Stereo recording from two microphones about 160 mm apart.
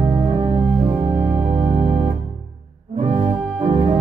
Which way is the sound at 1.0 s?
25° right (ahead or behind).